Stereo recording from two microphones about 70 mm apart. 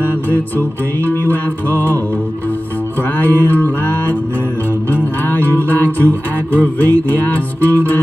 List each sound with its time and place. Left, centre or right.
0.3 s music: left
3.0 s music: left
5.4 s music: left